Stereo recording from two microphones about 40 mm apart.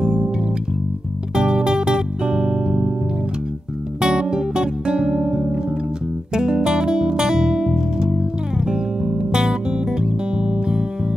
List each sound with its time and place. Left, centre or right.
0.0 s music: right
1.3 s music: centre
4.0 s music: centre
6.3 s guitar: centre